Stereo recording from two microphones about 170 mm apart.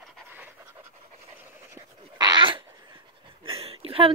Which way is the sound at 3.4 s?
35° right (ahead or behind).